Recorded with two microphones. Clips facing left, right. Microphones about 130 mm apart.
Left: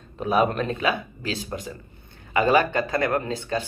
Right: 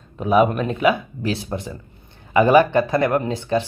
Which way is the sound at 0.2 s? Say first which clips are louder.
Right 5 dB; 15° right (ahead or behind).